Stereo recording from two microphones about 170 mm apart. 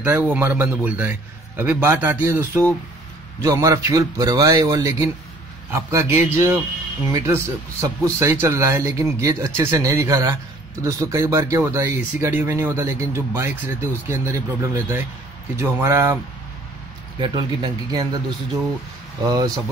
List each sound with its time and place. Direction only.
0.0 s a man's voice: 10° right (ahead or behind)
17.2 s a man's voice: 25° right (ahead or behind)
19.2 s a man's voice: 20° right (ahead or behind)